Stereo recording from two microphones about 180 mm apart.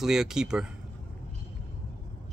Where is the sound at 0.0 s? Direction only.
Centre (ahead or behind).